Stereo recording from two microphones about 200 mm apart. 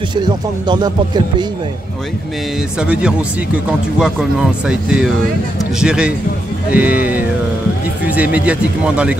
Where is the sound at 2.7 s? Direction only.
5° right (ahead or behind).